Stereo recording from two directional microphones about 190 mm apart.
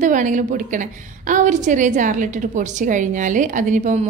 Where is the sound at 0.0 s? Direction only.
40° right (ahead or behind).